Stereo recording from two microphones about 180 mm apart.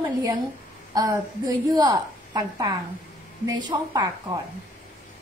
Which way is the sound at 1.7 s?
20° right (ahead or behind).